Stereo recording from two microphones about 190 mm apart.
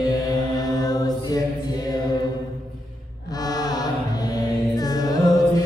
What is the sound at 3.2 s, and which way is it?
Chant, 20° left (ahead or behind).